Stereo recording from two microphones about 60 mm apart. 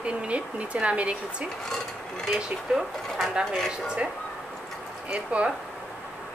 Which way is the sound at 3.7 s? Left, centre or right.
Centre.